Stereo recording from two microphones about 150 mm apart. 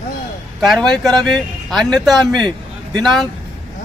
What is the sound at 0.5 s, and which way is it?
Speech, centre (ahead or behind).